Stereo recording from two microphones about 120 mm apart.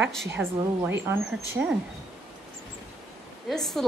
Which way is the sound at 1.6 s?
10° right (ahead or behind).